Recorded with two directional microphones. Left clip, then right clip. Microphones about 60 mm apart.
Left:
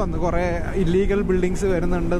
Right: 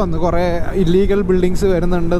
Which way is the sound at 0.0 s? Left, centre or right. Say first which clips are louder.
Right 6 dB; right.